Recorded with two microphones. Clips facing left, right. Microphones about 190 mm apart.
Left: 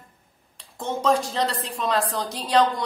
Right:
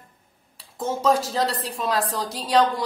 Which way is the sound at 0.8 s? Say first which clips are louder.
Right 1 dB; 5° right (ahead or behind).